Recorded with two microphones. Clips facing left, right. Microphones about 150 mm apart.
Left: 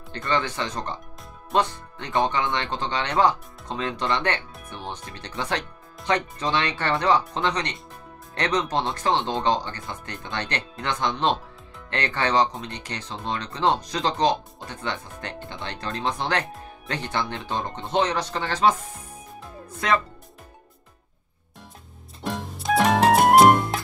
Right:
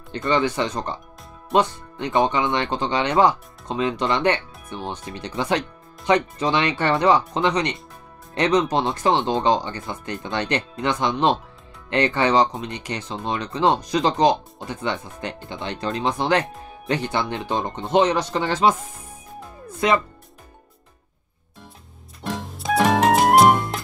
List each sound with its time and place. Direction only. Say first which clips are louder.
0.3 s speech: right 5 dB; 15° right (ahead or behind)
22.2 s music: right 1 dB; centre (ahead or behind)